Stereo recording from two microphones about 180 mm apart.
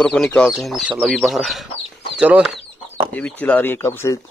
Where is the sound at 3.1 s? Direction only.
10° left (ahead or behind).